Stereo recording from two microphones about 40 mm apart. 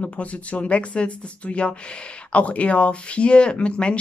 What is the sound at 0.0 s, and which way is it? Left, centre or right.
A woman's voice, left.